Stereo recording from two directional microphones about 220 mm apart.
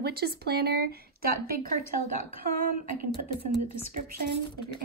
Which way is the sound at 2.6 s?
40° right (ahead or behind).